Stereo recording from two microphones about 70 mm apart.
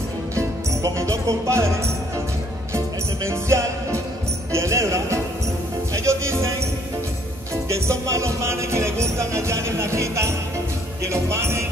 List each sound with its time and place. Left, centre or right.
0.4 s music: right
3.3 s music: right
4.5 s speech: right
5.9 s music: right
7.6 s music: right
11.1 s speech: right